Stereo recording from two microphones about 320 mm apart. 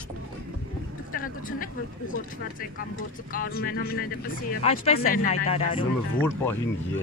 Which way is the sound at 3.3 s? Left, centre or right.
Left.